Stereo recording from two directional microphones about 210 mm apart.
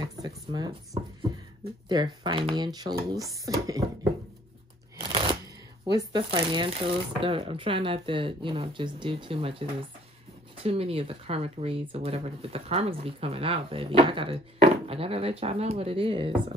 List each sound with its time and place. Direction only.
0.0 s a sound: 20° right (ahead or behind)
1.9 s speech: 20° right (ahead or behind)
5.1 s shuffling cards: 25° right (ahead or behind)
5.9 s speech: 20° right (ahead or behind)